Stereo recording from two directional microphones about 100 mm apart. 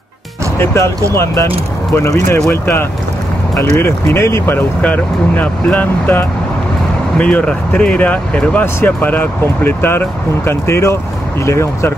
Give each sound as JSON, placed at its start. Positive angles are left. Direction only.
{"t": 0.6, "sound": "speech", "side_deg": 25}